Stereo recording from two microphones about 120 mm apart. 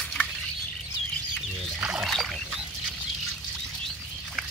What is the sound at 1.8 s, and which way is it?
Rowboat, 5° right (ahead or behind).